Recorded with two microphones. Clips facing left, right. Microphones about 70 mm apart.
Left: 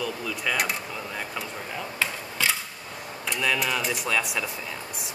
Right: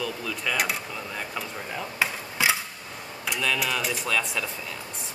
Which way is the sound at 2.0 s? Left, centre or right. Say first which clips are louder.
Right 2 dB; centre.